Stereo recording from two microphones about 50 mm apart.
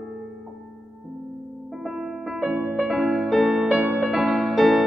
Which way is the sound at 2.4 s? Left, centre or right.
Right.